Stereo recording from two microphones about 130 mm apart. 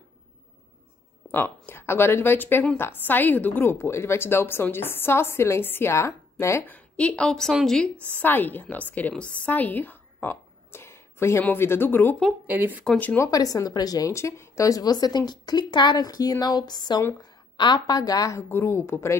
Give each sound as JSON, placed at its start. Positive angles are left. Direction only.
{"t": 1.3, "sound": "a woman's voice", "side_deg": 15}
{"t": 12.4, "sound": "speech", "side_deg": -15}
{"t": 12.8, "sound": "a woman's voice", "side_deg": 10}
{"t": 13.3, "sound": "a woman's voice", "side_deg": 25}